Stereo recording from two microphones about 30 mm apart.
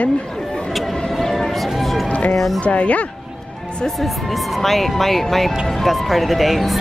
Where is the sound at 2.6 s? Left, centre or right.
Left.